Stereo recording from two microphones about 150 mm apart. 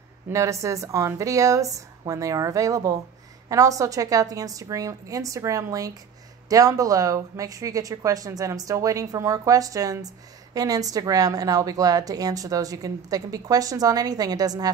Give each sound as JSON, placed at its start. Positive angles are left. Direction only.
{"t": 0.3, "sound": "speech", "side_deg": -20}